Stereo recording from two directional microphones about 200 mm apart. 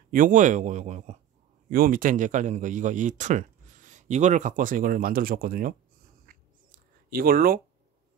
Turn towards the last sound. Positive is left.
turn(degrees=-45)  # may be behind; listen again after turning